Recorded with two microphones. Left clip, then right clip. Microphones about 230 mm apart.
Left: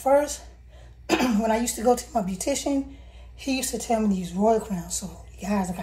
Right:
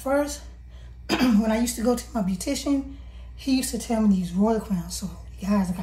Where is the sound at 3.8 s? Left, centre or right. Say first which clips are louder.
Left 1 dB; right.